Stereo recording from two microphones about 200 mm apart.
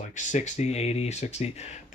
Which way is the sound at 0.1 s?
40° left (ahead or behind).